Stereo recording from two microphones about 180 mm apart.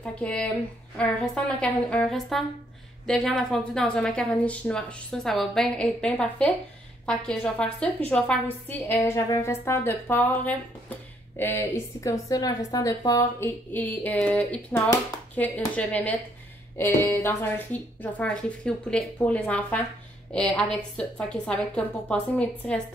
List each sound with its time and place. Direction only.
0.0 s a woman's voice: 5° left (ahead or behind)